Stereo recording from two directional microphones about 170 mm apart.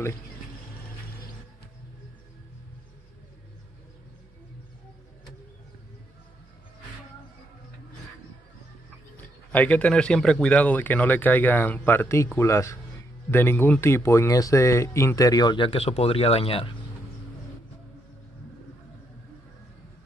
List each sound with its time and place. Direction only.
9.1 s speech: 10° left (ahead or behind); by 16.7 s 35° left (ahead or behind)